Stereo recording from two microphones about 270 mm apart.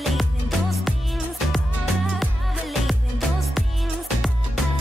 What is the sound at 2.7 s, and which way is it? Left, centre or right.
Music, centre.